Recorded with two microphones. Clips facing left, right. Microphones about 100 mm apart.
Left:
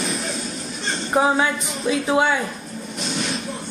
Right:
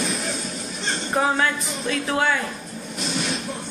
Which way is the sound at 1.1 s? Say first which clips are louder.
Left 3 dB; 15° left (ahead or behind).